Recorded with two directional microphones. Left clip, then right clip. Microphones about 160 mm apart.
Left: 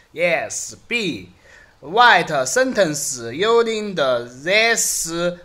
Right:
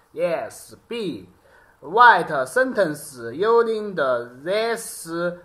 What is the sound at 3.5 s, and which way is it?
Speech, centre (ahead or behind).